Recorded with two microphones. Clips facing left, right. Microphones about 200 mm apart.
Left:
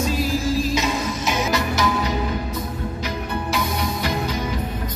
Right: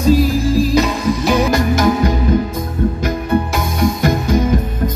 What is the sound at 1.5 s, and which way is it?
Music, 50° right (ahead or behind).